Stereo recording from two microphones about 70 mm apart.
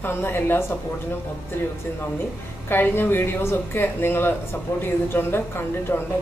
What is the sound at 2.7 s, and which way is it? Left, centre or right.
A woman's voice, left.